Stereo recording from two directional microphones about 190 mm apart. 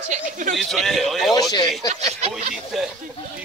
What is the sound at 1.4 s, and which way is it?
Speech, 20° left (ahead or behind).